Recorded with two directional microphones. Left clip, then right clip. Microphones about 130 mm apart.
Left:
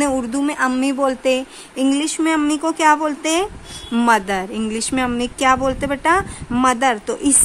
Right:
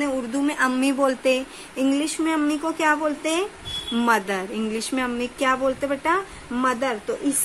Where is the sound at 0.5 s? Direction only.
30° left (ahead or behind).